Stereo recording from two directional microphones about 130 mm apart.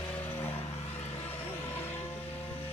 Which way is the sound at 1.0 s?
50° left (ahead or behind).